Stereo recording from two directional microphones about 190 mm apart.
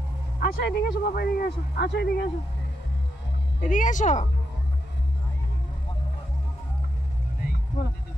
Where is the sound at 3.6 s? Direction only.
40° left (ahead or behind).